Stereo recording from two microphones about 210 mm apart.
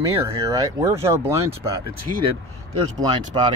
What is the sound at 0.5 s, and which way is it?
Speech, 15° right (ahead or behind).